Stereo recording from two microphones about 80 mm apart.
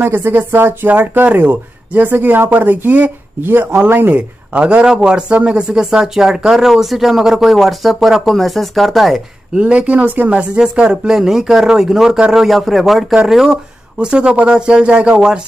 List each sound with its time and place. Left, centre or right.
0.0 s speech: right
4.6 s speech: centre
9.6 s speech: centre